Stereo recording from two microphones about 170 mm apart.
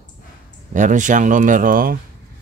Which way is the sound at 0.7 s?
50° right (ahead or behind).